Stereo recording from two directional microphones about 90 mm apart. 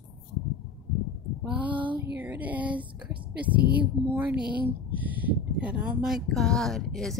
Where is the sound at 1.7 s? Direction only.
70° right (ahead or behind).